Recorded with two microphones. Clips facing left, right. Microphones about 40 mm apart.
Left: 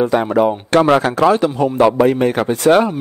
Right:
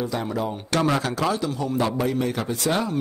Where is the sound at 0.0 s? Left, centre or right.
Left.